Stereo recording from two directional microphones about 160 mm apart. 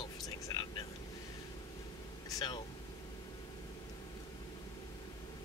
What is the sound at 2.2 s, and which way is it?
Speech, 25° left (ahead or behind).